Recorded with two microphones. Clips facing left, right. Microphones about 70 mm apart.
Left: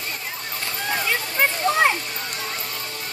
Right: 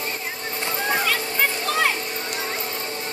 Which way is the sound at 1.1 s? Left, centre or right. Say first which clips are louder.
Left 1 dB; left.